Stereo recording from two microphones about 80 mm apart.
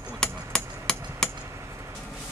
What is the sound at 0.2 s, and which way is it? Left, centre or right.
Hammer, centre.